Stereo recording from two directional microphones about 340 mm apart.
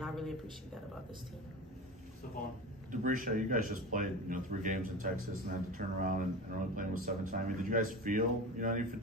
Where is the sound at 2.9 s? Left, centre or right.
Right.